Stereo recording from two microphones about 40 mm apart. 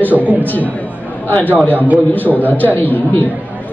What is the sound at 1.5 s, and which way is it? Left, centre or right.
A man's voice, left.